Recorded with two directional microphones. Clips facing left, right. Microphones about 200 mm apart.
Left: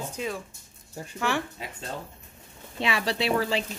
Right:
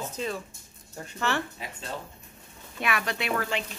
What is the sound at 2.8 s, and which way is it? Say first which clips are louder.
Speech: left 3 dB; 25° left (ahead or behind).